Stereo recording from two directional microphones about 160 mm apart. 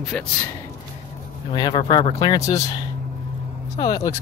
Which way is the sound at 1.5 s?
25° left (ahead or behind).